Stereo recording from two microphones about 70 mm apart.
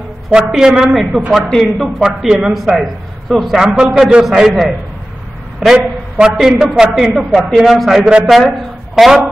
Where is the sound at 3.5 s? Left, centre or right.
Centre.